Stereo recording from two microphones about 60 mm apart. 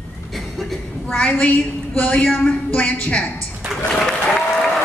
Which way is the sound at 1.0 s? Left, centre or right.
Centre.